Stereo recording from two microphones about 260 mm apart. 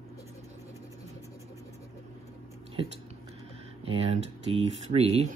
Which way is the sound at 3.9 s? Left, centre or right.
Right.